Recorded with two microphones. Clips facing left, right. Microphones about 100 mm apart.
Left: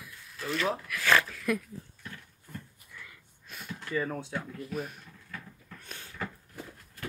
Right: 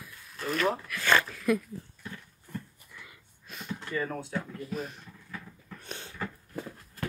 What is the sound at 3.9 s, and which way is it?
Speech, 5° left (ahead or behind).